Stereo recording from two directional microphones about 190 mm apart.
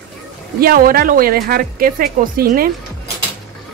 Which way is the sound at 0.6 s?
50° right (ahead or behind).